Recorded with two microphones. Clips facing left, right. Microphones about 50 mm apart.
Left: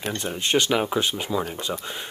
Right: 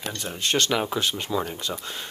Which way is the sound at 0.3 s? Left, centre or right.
Centre.